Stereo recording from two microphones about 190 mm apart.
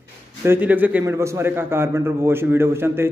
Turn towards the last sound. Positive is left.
turn(degrees=-15)  # may be behind; listen again after turning